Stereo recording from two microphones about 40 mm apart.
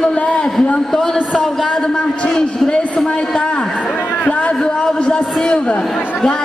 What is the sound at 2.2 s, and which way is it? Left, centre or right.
Speech, left.